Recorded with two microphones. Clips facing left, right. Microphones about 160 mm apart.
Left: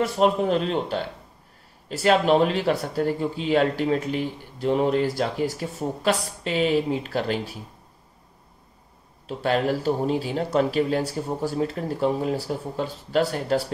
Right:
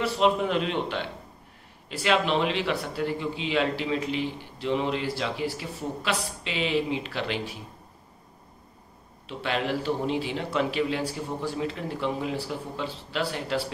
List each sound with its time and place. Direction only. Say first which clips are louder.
0.0 s speech: left 3 dB; 40° left (ahead or behind)
9.3 s speech: left 5 dB; 40° left (ahead or behind)